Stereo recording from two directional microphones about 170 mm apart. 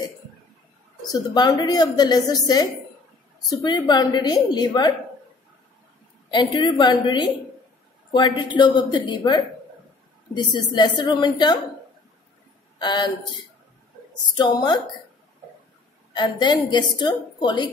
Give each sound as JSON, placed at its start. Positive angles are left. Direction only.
{"t": 1.1, "sound": "a woman's voice", "side_deg": 25}
{"t": 6.3, "sound": "a woman's voice", "side_deg": 25}
{"t": 12.7, "sound": "speech", "side_deg": 25}
{"t": 14.3, "sound": "a woman's voice", "side_deg": 25}
{"t": 16.1, "sound": "a woman's voice", "side_deg": 25}